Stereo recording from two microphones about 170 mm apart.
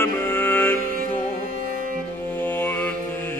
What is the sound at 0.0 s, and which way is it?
Music, 15° left (ahead or behind).